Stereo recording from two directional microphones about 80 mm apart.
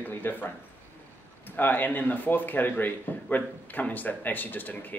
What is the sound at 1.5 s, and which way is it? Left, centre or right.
Speech, left.